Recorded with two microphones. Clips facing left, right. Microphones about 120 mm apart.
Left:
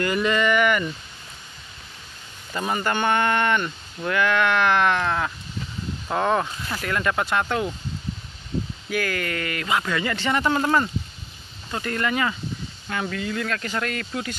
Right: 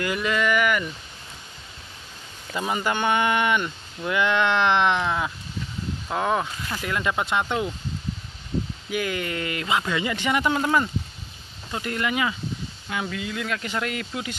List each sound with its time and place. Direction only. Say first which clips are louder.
0.0 s speech: left 3 dB; 5° right (ahead or behind)
2.5 s speech: left 1 dB; 10° right (ahead or behind)
6.0 s speech: left 2 dB; 5° right (ahead or behind)
8.9 s speech: left 1 dB; 15° right (ahead or behind)